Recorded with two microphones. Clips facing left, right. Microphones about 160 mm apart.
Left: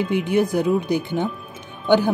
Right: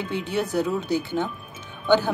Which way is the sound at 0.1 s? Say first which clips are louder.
Left 4 dB; 15° left (ahead or behind).